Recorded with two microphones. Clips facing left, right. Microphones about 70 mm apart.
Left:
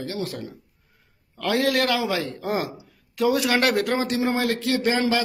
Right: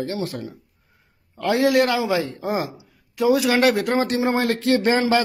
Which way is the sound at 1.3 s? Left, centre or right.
Centre.